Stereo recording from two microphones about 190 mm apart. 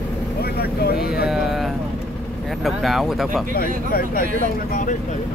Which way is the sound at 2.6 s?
Centre (ahead or behind).